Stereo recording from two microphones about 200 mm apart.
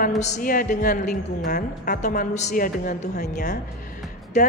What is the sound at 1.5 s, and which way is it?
Speech, 55° left (ahead or behind).